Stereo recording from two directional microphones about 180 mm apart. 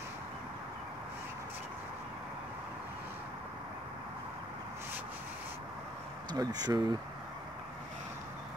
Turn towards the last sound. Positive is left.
turn(degrees=-20)  # may be behind; listen again after turning